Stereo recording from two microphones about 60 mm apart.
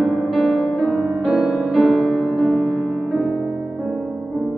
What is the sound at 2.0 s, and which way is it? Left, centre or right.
Music, centre.